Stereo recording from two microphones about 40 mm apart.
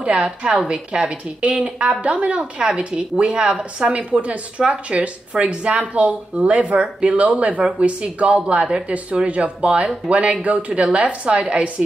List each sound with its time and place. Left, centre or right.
0.0 s a woman's voice: right
3.9 s a woman's voice: right